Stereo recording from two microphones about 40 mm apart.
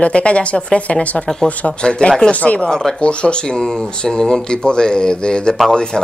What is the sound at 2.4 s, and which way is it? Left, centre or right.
Speech, left.